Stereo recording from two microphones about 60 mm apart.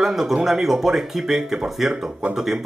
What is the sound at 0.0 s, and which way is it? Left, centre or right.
Speech, centre.